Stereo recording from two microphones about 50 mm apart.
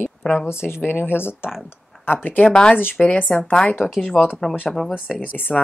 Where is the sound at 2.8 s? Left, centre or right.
Left.